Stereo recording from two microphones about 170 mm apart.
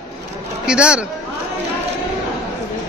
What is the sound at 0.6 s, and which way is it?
Speech, 5° right (ahead or behind).